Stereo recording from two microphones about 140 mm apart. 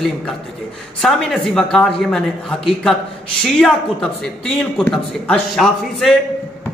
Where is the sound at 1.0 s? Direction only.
Centre (ahead or behind).